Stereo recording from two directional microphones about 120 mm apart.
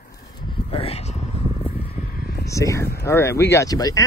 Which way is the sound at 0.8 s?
65° left (ahead or behind).